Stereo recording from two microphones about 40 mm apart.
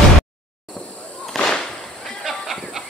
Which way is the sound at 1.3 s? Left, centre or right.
Centre.